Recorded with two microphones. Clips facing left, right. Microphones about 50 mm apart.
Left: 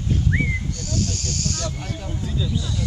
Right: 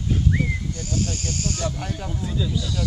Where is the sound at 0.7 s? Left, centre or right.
Centre.